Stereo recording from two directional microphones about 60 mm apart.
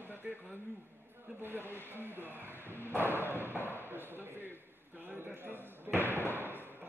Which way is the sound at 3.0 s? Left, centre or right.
Right.